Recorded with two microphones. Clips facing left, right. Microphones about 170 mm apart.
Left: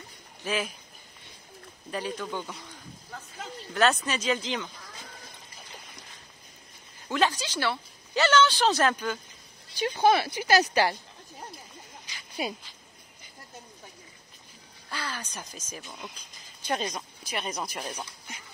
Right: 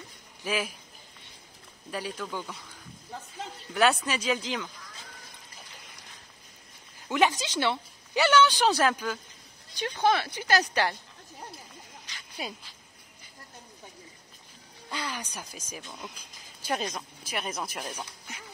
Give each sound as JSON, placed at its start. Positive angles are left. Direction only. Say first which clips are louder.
{"t": 0.4, "sound": "speech", "louder": "even", "side_deg": -10}
{"t": 1.9, "sound": "speech", "louder": "left 2 dB", "side_deg": -5}
{"t": 3.7, "sound": "speech", "louder": "even", "side_deg": -5}
{"t": 7.1, "sound": "a woman's voice", "louder": "right 1 dB", "side_deg": -15}
{"t": 9.8, "sound": "speech", "louder": "left 3 dB", "side_deg": 10}
{"t": 14.9, "sound": "a woman's voice", "louder": "right 1 dB", "side_deg": -15}
{"t": 15.8, "sound": "speech", "louder": "even", "side_deg": 0}